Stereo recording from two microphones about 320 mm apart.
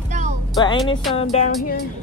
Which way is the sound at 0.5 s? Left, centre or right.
Centre.